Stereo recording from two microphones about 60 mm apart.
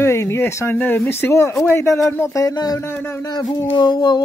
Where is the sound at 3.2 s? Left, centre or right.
Left.